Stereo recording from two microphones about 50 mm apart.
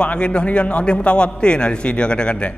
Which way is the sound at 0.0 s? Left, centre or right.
Centre.